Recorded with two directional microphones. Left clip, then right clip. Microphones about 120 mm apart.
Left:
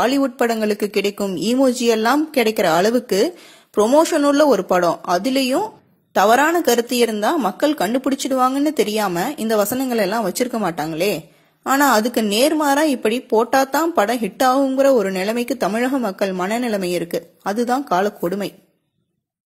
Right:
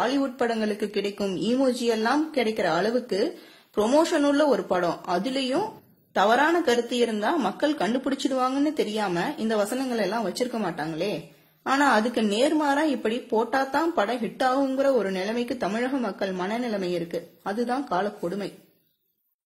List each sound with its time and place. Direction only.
0.0 s a woman's voice: 50° left (ahead or behind)